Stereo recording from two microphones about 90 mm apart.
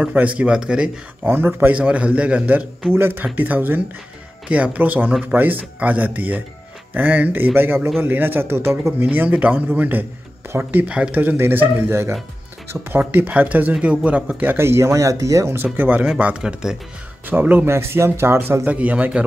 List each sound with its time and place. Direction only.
0.0 s speech: 15° right (ahead or behind)
1.2 s speech: 25° right (ahead or behind)
1.8 s speech: 15° right (ahead or behind)
13.0 s speech: 15° right (ahead or behind)
17.3 s speech: 20° right (ahead or behind)
18.7 s speech: 15° right (ahead or behind)